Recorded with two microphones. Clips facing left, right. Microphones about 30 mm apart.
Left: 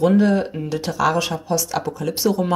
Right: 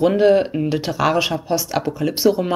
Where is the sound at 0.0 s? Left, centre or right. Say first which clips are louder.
Right 2 dB; right.